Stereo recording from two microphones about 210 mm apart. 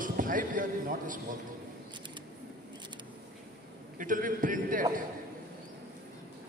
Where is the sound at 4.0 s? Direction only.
40° right (ahead or behind).